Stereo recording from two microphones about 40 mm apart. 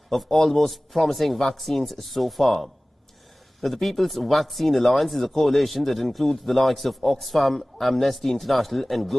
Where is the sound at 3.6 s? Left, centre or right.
Centre.